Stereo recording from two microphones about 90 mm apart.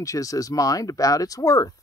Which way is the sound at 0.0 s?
40° left (ahead or behind).